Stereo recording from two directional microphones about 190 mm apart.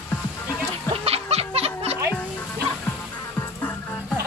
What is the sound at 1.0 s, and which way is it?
Music, 30° right (ahead or behind).